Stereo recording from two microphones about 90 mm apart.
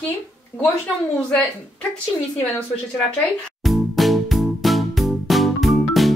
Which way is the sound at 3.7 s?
Centre (ahead or behind).